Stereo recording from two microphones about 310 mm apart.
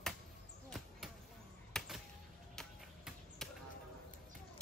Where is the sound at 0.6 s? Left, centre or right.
Centre.